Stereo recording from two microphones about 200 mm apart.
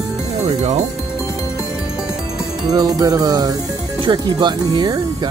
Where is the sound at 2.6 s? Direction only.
20° right (ahead or behind).